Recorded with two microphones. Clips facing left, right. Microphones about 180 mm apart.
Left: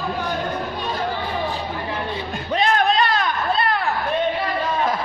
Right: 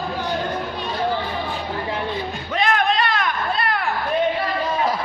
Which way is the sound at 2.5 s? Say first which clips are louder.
Left 2 dB; 35° left (ahead or behind).